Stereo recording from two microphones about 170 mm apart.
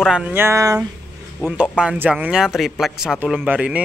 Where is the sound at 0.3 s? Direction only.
15° right (ahead or behind).